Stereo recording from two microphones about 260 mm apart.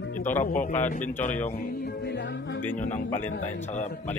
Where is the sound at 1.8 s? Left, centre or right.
Left.